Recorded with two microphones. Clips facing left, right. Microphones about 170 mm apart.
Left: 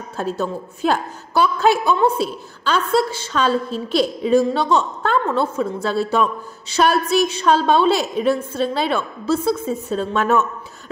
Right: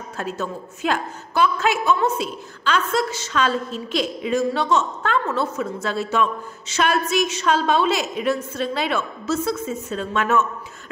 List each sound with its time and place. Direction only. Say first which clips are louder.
0.2 s a woman's voice: left 5 dB; 35° left (ahead or behind)